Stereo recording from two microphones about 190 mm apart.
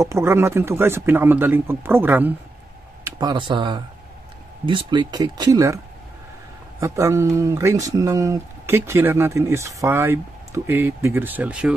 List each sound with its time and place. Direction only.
0.0 s speech: 15° right (ahead or behind)
3.0 s speech: 20° right (ahead or behind)
6.8 s speech: 15° right (ahead or behind)